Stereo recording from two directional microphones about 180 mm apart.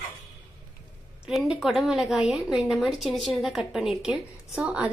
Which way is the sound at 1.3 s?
5° right (ahead or behind).